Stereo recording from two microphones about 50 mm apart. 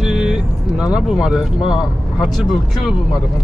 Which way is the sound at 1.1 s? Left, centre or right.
Centre.